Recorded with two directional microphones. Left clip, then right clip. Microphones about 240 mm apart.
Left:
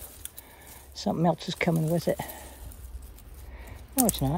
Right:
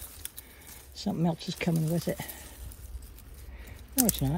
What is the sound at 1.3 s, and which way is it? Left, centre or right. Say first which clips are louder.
Speech: left 5 dB; centre.